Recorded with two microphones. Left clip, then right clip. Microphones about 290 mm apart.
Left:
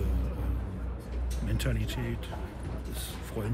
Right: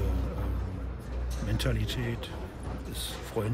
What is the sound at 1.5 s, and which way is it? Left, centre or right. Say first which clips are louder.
Speech: right 3 dB; centre.